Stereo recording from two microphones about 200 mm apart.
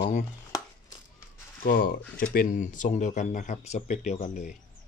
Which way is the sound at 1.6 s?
45° left (ahead or behind).